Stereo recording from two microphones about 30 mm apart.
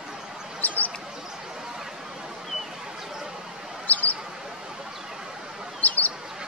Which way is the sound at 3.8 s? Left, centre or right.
Left.